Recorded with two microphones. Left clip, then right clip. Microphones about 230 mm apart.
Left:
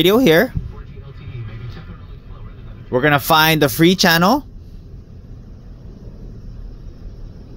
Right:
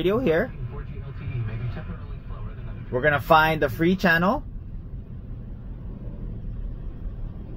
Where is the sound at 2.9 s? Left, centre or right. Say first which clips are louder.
Left 5 dB; left.